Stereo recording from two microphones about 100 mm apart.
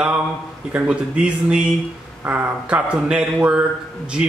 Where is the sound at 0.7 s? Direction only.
10° right (ahead or behind).